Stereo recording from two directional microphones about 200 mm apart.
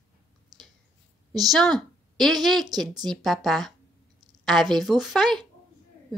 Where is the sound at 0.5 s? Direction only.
20° right (ahead or behind).